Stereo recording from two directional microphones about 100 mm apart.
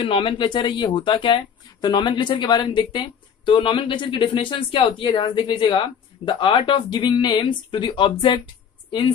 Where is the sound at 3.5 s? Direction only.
60° left (ahead or behind).